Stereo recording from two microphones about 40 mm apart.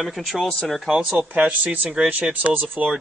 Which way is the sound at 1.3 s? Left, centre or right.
Right.